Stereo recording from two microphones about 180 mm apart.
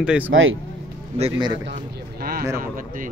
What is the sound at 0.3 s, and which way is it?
Speech, 90° right.